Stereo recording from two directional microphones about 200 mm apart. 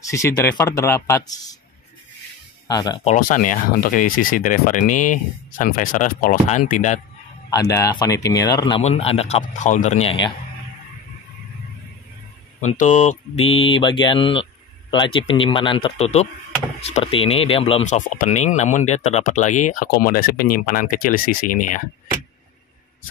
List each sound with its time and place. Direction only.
0.1 s speech: 15° left (ahead or behind)
2.7 s speech: 20° left (ahead or behind)
3.2 s speech: 40° left (ahead or behind)
7.5 s speech: 20° left (ahead or behind)
12.5 s speech: 40° left (ahead or behind)